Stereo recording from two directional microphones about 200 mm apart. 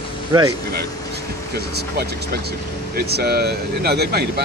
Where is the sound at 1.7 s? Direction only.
50° right (ahead or behind).